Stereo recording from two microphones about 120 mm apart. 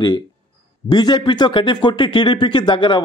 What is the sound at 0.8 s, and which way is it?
A man's voice, 35° left (ahead or behind).